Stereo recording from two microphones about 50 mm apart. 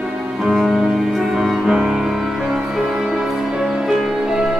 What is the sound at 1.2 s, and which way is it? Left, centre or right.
Music, centre.